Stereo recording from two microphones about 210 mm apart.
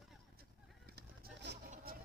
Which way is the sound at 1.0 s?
50° right (ahead or behind).